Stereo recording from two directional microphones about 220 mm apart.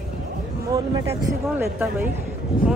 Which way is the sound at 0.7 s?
10° right (ahead or behind).